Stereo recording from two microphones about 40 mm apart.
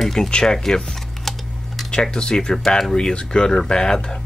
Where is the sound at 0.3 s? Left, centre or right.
Centre.